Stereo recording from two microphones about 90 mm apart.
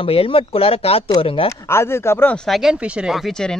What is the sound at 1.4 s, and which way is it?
Speech, 30° left (ahead or behind).